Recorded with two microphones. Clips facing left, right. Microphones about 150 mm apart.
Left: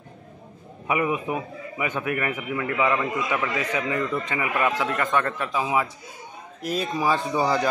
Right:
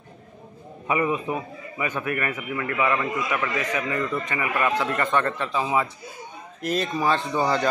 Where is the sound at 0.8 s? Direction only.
10° left (ahead or behind).